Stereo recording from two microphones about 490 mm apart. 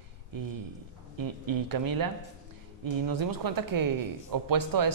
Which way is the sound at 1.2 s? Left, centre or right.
Right.